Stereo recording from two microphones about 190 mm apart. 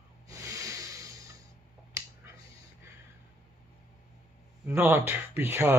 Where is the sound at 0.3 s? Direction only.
15° right (ahead or behind).